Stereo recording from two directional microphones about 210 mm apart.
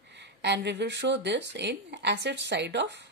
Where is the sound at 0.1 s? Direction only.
55° right (ahead or behind).